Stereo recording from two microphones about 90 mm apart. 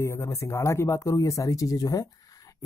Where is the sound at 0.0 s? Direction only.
30° left (ahead or behind).